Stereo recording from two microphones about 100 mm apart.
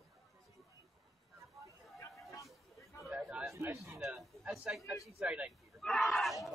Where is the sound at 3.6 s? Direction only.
25° right (ahead or behind).